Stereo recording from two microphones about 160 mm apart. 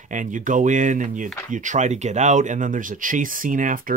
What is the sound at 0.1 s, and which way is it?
Speech, 55° right (ahead or behind).